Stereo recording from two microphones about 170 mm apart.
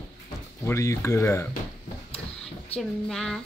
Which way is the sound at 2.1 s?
35° left (ahead or behind).